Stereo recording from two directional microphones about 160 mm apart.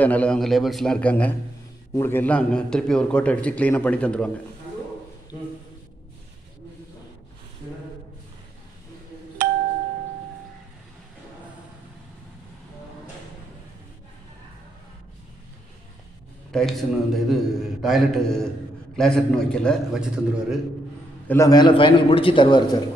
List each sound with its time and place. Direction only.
0.0 s a man's voice: 10° left (ahead or behind)
9.4 s a sound: 65° right (ahead or behind)
16.5 s a man's voice: centre (ahead or behind)
21.3 s a man's voice: 20° left (ahead or behind)